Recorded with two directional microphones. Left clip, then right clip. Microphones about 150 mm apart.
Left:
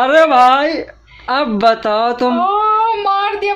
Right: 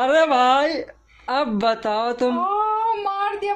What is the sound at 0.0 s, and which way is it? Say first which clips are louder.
Speech: left 8 dB; 15° right (ahead or behind).